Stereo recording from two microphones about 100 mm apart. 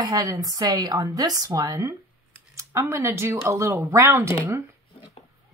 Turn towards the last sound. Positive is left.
turn(degrees=-25)  # may be behind; listen again after turning